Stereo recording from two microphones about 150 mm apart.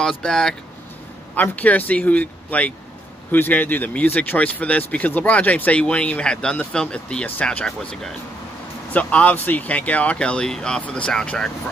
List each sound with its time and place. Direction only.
0.2 s speech: 5° left (ahead or behind)